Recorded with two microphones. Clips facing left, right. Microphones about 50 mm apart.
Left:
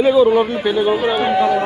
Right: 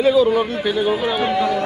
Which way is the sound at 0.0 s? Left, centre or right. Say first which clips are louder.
Left 3 dB; centre.